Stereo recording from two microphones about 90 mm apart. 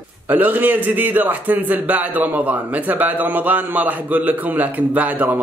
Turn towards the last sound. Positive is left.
turn(degrees=-20)  # may be behind; listen again after turning